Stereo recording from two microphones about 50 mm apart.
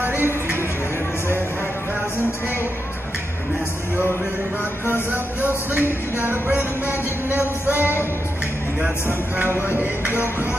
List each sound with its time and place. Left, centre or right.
0.0 s music: right
5.4 s speech: left
6.1 s music: right
9.7 s music: right